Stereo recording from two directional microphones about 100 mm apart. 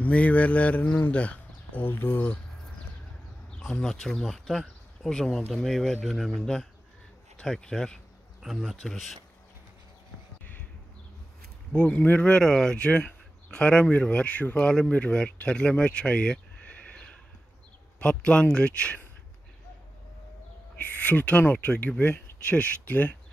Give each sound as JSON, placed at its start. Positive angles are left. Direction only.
{"t": 0.0, "sound": "speech", "side_deg": 15}
{"t": 3.5, "sound": "speech", "side_deg": 5}
{"t": 8.4, "sound": "speech", "side_deg": -5}
{"t": 11.7, "sound": "speech", "side_deg": 10}
{"t": 20.8, "sound": "speech", "side_deg": 15}